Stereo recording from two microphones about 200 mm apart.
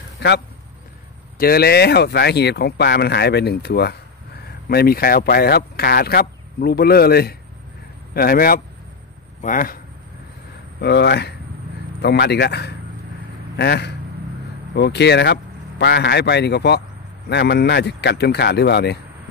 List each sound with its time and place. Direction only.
0.2 s speech: 55° left (ahead or behind)
1.4 s speech: 50° left (ahead or behind)
10.8 s speech: 55° left (ahead or behind)